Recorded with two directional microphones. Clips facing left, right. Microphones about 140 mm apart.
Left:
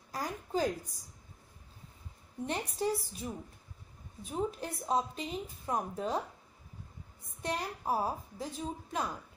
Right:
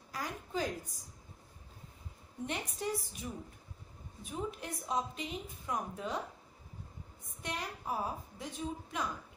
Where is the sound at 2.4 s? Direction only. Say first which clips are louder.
Left 4 dB; 35° left (ahead or behind).